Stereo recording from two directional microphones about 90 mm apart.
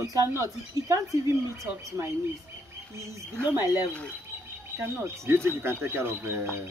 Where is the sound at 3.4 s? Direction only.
25° right (ahead or behind).